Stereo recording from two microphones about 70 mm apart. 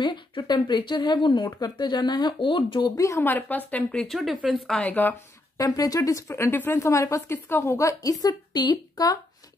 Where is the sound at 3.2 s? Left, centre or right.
Left.